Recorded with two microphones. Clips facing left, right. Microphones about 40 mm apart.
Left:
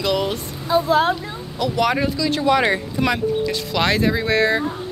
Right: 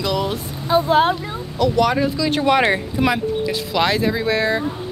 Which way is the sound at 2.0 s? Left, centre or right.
Centre.